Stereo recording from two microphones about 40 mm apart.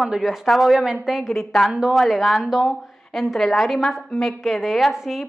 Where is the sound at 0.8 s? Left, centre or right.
Centre.